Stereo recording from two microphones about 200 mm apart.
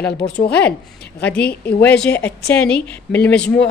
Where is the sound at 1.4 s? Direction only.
55° left (ahead or behind).